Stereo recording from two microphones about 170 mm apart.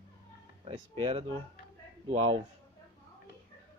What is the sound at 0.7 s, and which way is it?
Speech, 35° right (ahead or behind).